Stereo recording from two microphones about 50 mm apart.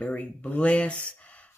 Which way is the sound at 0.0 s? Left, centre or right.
Left.